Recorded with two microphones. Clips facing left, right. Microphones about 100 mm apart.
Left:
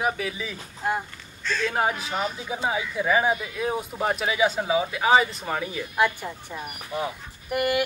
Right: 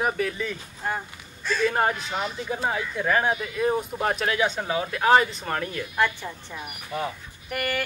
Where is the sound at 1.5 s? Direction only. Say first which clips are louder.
Right 2 dB; 5° right (ahead or behind).